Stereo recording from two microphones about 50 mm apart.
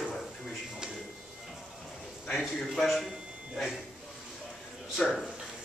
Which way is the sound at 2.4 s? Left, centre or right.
Centre.